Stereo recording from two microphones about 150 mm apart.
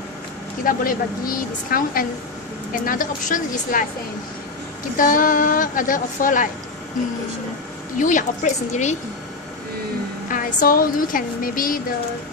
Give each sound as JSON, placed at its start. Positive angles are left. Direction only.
{"t": 0.7, "sound": "a woman's voice", "side_deg": 70}
{"t": 4.9, "sound": "a woman's voice", "side_deg": 65}
{"t": 8.0, "sound": "a woman's voice", "side_deg": 60}
{"t": 10.2, "sound": "speech", "side_deg": 65}